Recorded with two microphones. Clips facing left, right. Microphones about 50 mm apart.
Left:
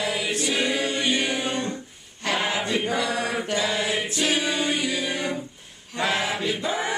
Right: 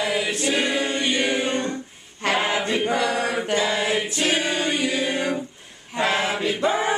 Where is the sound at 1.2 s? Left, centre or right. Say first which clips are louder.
Right 3 dB; right.